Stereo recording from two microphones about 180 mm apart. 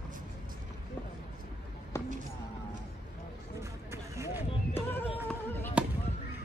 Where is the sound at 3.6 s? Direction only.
15° right (ahead or behind).